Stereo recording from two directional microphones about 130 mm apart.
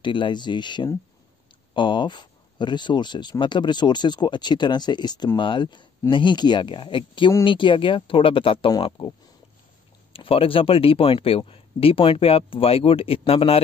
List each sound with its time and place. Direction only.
0.0 s speech: 40° left (ahead or behind)
10.1 s speech: 45° left (ahead or behind)